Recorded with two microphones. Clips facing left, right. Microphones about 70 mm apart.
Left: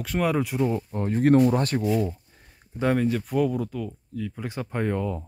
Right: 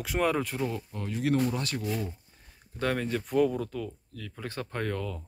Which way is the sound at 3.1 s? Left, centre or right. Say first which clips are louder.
Left 2 dB; centre.